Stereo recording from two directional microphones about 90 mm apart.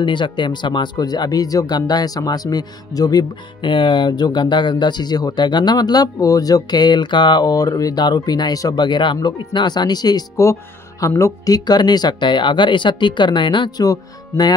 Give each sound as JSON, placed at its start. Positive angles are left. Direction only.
{"t": 0.0, "sound": "speech", "side_deg": 60}
{"t": 3.6, "sound": "speech", "side_deg": 65}